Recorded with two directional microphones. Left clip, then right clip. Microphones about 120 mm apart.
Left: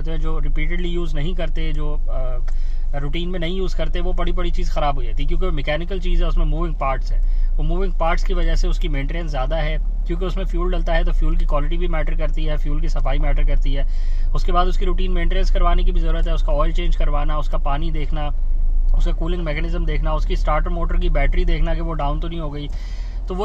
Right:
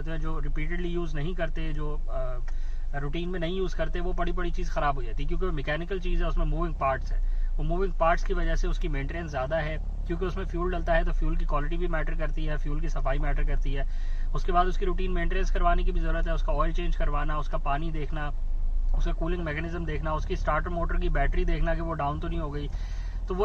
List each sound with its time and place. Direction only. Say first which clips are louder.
0.0 s speech: left 6 dB; 25° left (ahead or behind)
21.8 s speech: left 5 dB; 20° left (ahead or behind)